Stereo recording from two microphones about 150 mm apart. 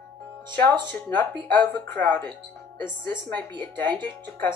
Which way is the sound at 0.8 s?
10° left (ahead or behind).